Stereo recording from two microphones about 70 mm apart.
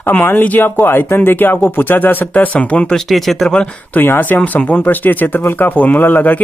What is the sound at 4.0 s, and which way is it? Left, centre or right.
Speech, left.